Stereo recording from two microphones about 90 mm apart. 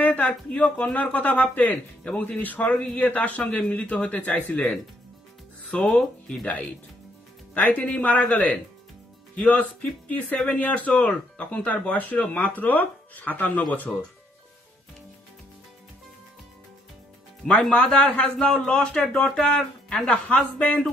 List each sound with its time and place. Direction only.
0.0 s a man's voice: 20° left (ahead or behind)
5.8 s a man's voice: 5° left (ahead or behind)
17.5 s a man's voice: 5° left (ahead or behind)